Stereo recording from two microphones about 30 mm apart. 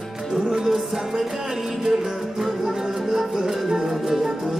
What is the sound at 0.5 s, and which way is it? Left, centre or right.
Music, right.